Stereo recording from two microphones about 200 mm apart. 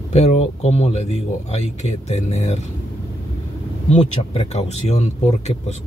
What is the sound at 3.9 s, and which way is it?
Speech, 35° left (ahead or behind).